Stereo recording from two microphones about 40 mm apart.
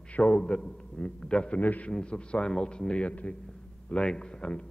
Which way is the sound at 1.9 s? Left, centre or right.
Left.